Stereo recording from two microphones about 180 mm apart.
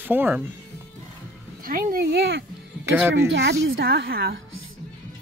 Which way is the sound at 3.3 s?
75° right (ahead or behind).